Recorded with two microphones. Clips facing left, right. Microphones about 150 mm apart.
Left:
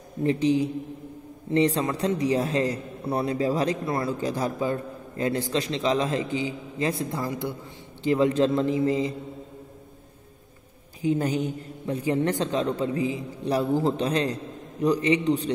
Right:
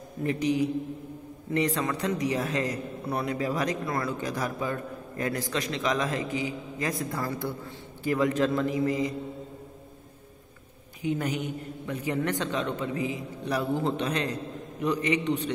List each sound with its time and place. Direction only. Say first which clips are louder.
0.2 s a man's voice: left 4 dB; 30° left (ahead or behind)
11.0 s a man's voice: left 5 dB; 30° left (ahead or behind)